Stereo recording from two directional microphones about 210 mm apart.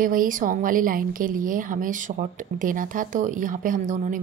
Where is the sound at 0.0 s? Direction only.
40° right (ahead or behind).